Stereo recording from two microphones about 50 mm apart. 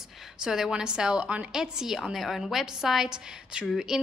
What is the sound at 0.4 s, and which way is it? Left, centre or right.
A woman's voice, centre.